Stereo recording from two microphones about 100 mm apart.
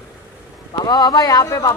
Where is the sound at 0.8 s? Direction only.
45° left (ahead or behind).